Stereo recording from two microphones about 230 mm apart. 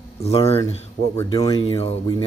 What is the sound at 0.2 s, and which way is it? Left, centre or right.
Speech, left.